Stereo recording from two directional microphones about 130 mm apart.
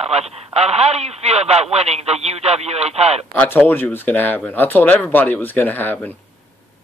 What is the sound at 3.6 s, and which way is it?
Speech, 15° left (ahead or behind).